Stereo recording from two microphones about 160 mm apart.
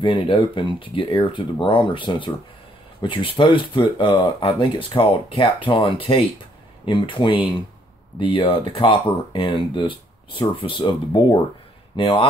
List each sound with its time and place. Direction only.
0.0 s speech: 30° left (ahead or behind)